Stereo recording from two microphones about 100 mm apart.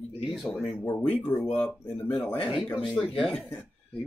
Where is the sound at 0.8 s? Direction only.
25° left (ahead or behind).